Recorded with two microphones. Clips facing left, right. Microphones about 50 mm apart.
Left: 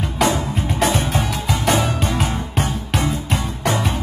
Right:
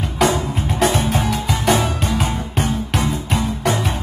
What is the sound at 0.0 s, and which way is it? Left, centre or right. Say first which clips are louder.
Music: right 1 dB; centre.